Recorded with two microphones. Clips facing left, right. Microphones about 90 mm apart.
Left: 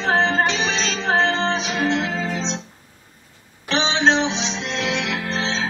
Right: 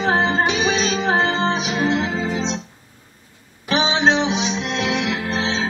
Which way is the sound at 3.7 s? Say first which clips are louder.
Right 1 dB; 10° right (ahead or behind).